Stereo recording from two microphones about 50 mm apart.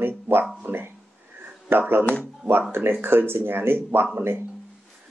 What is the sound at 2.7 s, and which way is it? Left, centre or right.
Speech, right.